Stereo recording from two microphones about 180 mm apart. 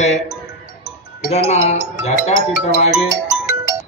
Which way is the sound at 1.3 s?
40° left (ahead or behind).